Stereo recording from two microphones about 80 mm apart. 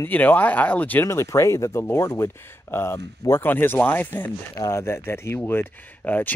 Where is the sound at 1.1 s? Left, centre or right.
Left.